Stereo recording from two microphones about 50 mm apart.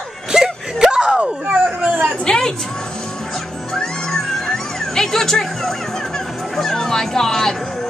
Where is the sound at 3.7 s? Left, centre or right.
Centre.